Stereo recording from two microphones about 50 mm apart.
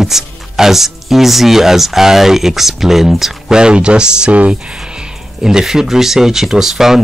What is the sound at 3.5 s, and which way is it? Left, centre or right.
Speech, centre.